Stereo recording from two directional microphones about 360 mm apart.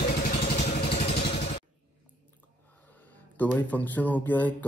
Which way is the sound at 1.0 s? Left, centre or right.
Centre.